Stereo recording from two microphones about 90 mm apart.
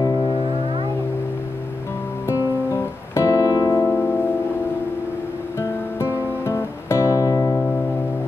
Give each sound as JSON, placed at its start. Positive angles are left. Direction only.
{"t": 0.2, "sound": "music", "side_deg": 75}
{"t": 2.2, "sound": "music", "side_deg": 30}
{"t": 3.9, "sound": "music", "side_deg": 20}
{"t": 5.6, "sound": "guitar", "side_deg": 30}